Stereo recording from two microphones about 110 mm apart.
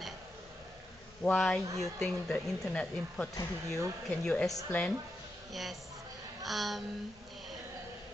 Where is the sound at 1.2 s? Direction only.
10° left (ahead or behind).